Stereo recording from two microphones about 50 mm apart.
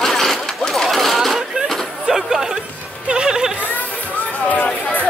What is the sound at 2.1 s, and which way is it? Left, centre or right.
Music, centre.